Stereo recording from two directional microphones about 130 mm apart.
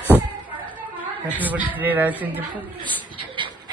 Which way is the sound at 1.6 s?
15° right (ahead or behind).